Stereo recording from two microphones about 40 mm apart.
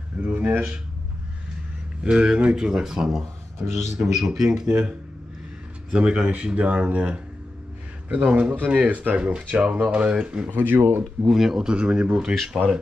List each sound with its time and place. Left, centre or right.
0.4 s speech: right
2.0 s speech: right
4.6 s speech: right
10.5 s speech: right
11.2 s speech: centre
11.7 s speech: right
12.6 s speech: left